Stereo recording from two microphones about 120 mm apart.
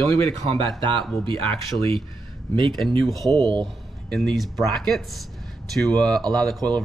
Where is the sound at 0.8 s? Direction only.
45° right (ahead or behind).